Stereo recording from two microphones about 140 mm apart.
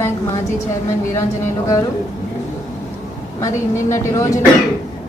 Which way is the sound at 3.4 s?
20° left (ahead or behind).